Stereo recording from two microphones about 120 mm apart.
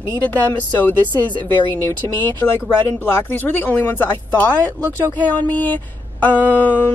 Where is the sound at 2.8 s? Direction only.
15° left (ahead or behind).